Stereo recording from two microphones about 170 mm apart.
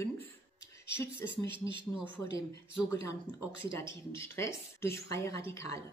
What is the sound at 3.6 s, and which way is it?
A woman's voice, 15° left (ahead or behind).